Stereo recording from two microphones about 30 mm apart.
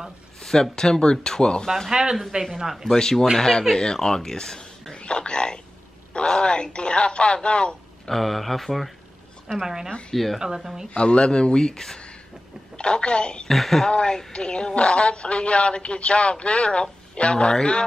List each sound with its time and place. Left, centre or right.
0.4 s speech: centre
2.3 s speech: right
2.7 s speech: centre
3.0 s speech: left
4.9 s a woman's voice: left
8.1 s speech: centre
9.6 s speech: centre
10.1 s speech: centre
10.6 s speech: centre
10.9 s a woman's voice: left; by 12.0 s centre
12.7 s a woman's voice: left
13.5 s speech: centre
13.8 s a woman's voice: left